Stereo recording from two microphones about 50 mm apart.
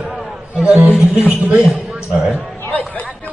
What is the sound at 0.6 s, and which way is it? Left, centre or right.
A man's voice, right.